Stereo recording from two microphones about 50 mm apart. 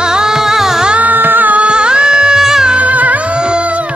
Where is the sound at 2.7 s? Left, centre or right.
Right.